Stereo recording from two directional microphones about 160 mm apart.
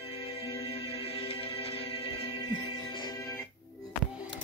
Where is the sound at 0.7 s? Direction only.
35° left (ahead or behind); by 3.5 s 20° left (ahead or behind).